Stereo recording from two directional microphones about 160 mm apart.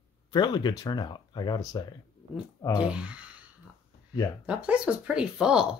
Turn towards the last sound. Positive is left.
turn(degrees=-5)  # may be behind; listen again after turning